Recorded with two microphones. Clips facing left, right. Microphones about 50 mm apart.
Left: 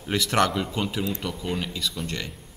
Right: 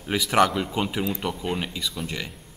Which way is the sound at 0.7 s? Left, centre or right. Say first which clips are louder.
Right 1 dB; centre.